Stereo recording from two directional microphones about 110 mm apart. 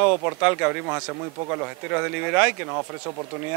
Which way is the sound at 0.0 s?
20° right (ahead or behind).